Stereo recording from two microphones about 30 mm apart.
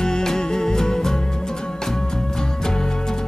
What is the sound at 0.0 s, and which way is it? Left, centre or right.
Music, centre.